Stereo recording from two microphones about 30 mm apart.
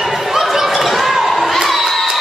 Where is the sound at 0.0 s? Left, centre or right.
Centre.